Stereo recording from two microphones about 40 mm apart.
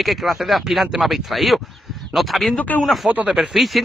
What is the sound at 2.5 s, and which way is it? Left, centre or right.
Speech, left.